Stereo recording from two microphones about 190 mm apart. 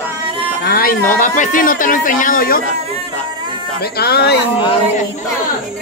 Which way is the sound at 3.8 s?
55° left (ahead or behind).